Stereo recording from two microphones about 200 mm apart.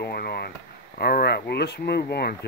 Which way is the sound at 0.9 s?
50° left (ahead or behind).